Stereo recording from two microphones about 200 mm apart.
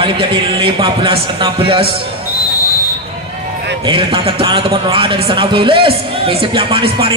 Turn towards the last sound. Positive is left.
turn(degrees=-25)  # may be behind; listen again after turning